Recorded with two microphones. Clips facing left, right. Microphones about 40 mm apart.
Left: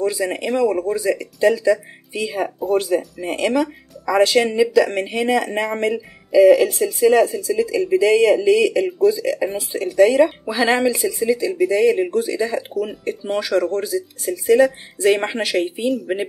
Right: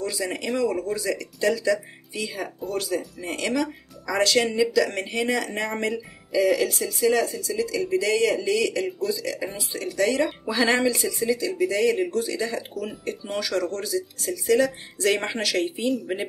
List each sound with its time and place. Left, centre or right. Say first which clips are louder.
0.2 s speech: left 6 dB; centre
3.2 s speech: left 6 dB; centre